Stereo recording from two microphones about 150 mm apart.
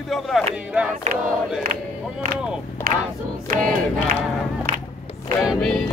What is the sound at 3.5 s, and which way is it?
Battle cry, 65° right (ahead or behind).